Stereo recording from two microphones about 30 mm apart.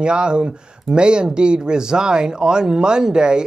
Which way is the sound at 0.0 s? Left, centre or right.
Right.